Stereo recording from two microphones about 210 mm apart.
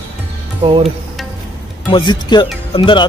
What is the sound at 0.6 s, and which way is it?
Music, 30° right (ahead or behind).